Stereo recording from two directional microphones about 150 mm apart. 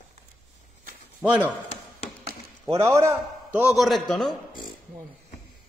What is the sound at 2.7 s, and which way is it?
Speech, 15° right (ahead or behind).